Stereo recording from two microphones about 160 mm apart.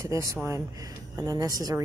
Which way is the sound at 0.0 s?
20° right (ahead or behind).